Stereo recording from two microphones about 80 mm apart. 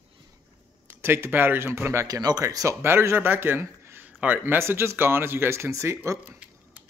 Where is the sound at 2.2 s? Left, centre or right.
Right.